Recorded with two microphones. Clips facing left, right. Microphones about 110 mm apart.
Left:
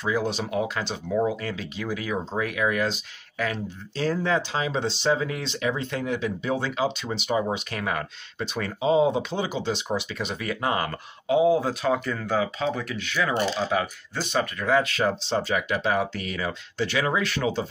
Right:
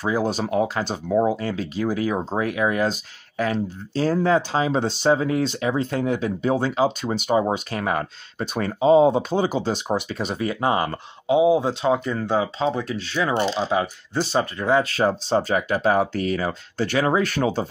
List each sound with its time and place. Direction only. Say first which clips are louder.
0.0 s speech: right 3 dB; 40° right (ahead or behind)